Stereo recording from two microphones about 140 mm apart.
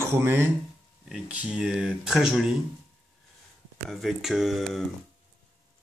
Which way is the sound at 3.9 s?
Centre (ahead or behind).